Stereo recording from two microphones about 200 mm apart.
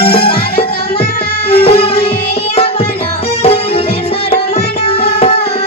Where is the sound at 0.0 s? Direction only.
25° left (ahead or behind).